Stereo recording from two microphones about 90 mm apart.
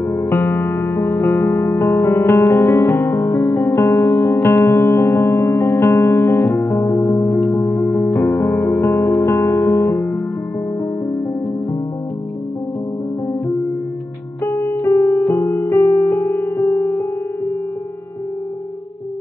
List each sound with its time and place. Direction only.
0.0 s music: 30° left (ahead or behind)
14.4 s music: 35° left (ahead or behind)